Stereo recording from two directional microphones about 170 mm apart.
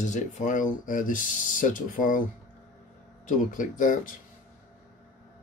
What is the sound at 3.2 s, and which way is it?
Speech, 50° left (ahead or behind).